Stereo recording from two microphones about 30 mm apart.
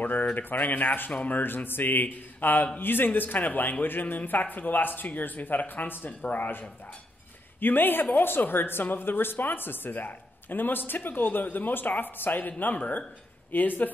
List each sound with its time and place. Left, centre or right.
0.0 s a woman's voice: left
1.1 s speech: left
1.6 s a woman's voice: left
7.6 s a woman's voice: left